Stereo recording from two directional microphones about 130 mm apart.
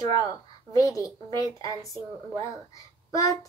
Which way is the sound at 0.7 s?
25° left (ahead or behind).